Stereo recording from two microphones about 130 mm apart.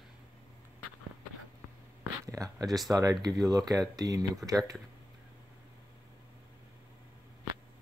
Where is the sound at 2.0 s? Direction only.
25° right (ahead or behind).